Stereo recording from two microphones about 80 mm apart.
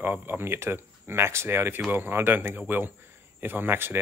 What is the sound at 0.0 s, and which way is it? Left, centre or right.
Speech, right.